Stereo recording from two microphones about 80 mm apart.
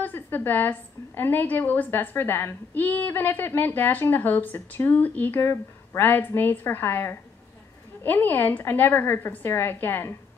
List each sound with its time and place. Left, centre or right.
0.0 s a woman's voice: left